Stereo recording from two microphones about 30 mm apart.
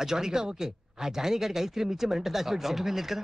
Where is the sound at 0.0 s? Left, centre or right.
Centre.